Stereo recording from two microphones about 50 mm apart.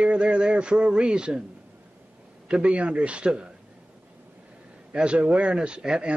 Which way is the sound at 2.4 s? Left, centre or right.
Centre.